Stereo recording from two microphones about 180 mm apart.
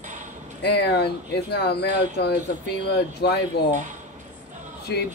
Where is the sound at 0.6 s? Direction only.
65° left (ahead or behind).